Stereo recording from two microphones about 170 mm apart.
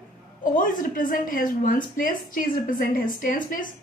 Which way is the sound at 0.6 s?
55° left (ahead or behind).